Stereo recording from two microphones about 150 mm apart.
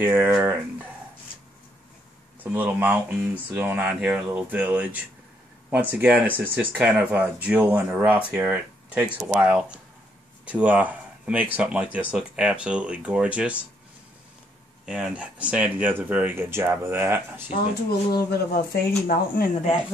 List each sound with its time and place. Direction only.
0.0 s speech: 15° right (ahead or behind)
2.4 s speech: 10° right (ahead or behind)
14.9 s speech: 5° right (ahead or behind)
18.1 s speech: 90° left; by 19.5 s 70° left (ahead or behind)